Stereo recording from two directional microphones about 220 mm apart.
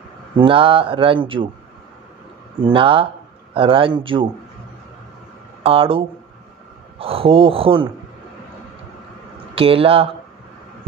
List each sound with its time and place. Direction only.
0.4 s speech: 25° right (ahead or behind)
2.6 s speech: 25° right (ahead or behind)
5.6 s speech: 25° right (ahead or behind)
9.6 s speech: 25° right (ahead or behind)